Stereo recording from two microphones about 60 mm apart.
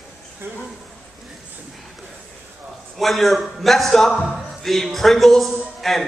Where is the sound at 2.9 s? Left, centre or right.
Centre.